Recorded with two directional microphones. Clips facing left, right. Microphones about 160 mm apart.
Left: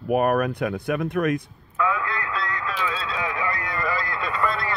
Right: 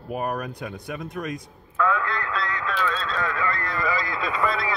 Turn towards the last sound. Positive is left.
turn(degrees=0)  # may be behind; listen again after turning